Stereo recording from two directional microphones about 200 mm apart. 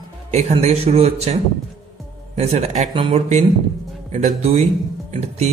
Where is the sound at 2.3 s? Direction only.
30° right (ahead or behind).